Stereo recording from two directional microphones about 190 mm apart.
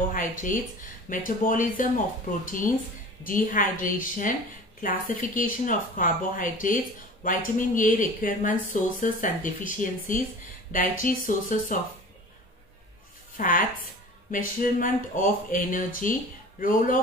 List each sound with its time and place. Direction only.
0.1 s speech: 45° left (ahead or behind)
13.4 s speech: 45° left (ahead or behind)